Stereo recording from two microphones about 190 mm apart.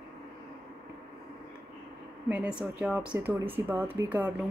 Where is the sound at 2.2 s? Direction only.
5° right (ahead or behind).